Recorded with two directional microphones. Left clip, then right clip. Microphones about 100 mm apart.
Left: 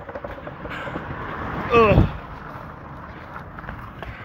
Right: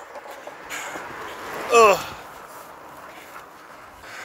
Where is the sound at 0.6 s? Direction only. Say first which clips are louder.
Left 1 dB; 65° right (ahead or behind).